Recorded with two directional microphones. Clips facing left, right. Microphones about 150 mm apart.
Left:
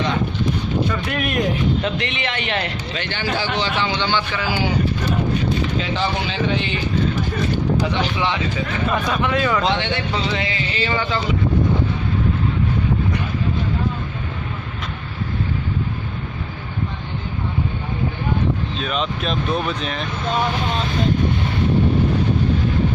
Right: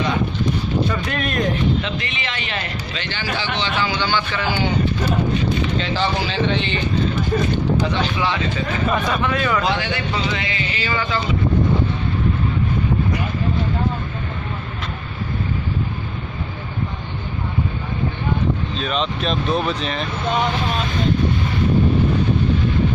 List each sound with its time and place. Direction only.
1.0 s speech: 10° left (ahead or behind)
2.0 s a man's voice: 65° left (ahead or behind); by 3.7 s 45° left (ahead or behind)
3.8 s a man's voice: 20° left (ahead or behind)
5.8 s speech: centre (ahead or behind)
7.8 s speech: 15° left (ahead or behind)
8.8 s speech: centre (ahead or behind)
9.2 s a man's voice: 20° left (ahead or behind)
18.8 s speech: 5° left (ahead or behind)